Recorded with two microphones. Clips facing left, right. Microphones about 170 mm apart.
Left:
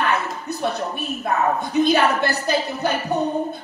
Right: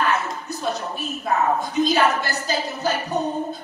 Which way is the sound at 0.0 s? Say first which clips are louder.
Even; 60° left (ahead or behind).